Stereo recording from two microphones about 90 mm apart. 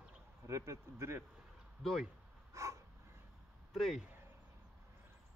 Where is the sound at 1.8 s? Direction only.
Centre (ahead or behind).